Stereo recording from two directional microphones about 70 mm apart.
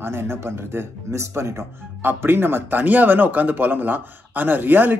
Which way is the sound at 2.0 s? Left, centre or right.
Right.